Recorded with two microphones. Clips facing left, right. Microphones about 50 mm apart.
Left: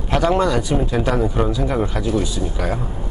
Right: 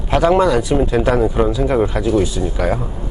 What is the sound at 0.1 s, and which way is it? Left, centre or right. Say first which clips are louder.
Speech: right 4 dB; centre.